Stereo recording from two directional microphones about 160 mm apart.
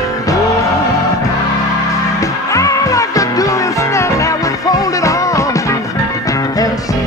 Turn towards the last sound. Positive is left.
turn(degrees=20)  # may be behind; listen again after turning